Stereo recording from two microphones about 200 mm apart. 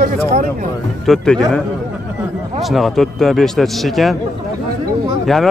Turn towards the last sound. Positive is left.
turn(degrees=0)  # may be behind; listen again after turning